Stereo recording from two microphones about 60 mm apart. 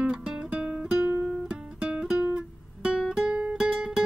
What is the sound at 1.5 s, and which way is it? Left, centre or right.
Music, centre.